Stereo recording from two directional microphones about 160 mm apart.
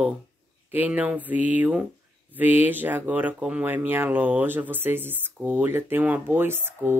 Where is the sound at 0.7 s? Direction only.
10° right (ahead or behind).